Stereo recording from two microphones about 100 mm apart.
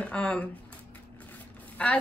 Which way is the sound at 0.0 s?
10° left (ahead or behind).